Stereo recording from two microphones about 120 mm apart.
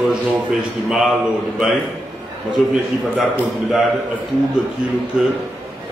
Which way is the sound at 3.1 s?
5° right (ahead or behind).